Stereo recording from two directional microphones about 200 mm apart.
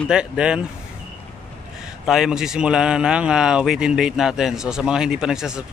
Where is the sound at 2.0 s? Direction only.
5° right (ahead or behind).